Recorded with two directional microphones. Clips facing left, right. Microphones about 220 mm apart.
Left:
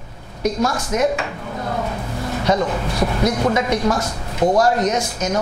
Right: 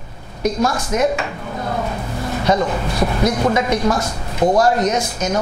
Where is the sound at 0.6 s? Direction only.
25° right (ahead or behind).